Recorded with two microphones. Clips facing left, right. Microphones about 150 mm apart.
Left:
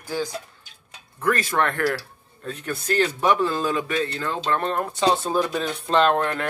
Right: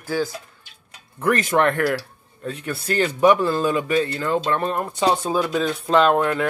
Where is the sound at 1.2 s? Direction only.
20° right (ahead or behind).